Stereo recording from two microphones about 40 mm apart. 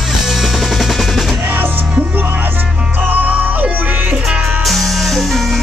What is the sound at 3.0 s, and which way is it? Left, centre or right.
Music, right.